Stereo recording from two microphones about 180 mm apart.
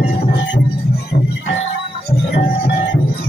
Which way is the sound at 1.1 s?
90° left.